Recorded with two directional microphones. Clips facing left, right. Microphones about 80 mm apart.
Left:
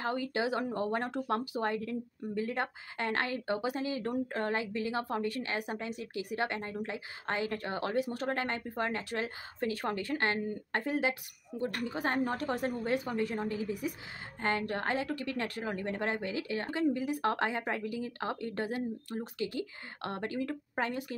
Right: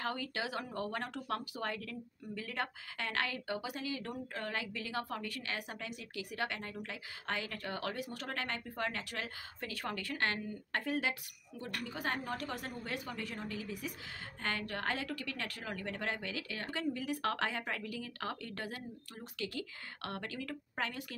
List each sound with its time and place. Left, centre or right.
0.0 s speech: left